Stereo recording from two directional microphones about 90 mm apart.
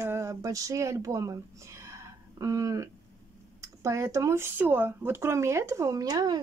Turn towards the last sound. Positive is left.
turn(degrees=-45)  # may be behind; listen again after turning